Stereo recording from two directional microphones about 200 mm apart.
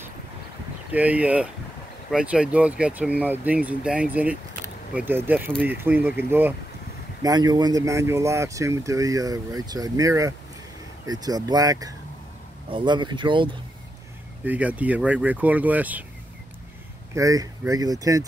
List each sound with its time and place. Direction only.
0.9 s speech: 5° right (ahead or behind)
7.2 s speech: 20° right (ahead or behind)
14.4 s speech: 5° right (ahead or behind)
17.1 s speech: 15° right (ahead or behind)